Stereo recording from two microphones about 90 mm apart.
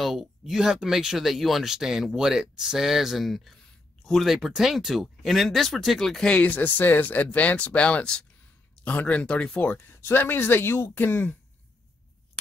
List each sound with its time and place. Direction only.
0.0 s speech: centre (ahead or behind); by 9.8 s 15° left (ahead or behind)
9.9 s speech: 25° left (ahead or behind)